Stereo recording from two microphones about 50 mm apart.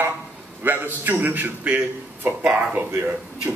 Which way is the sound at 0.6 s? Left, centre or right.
Right.